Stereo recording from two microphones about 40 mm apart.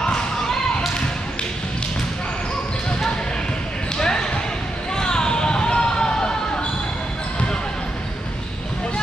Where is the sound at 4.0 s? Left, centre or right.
Centre.